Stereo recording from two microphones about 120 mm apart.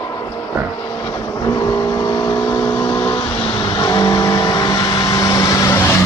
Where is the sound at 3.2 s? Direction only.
45° left (ahead or behind).